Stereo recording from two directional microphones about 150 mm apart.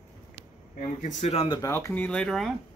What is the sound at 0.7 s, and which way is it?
Speech, 50° left (ahead or behind).